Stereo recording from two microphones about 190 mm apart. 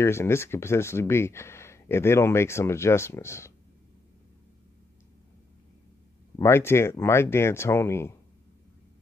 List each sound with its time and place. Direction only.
0.0 s speech: 15° left (ahead or behind)
6.3 s speech: 15° left (ahead or behind)